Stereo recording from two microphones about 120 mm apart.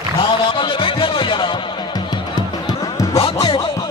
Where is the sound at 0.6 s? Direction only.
45° left (ahead or behind).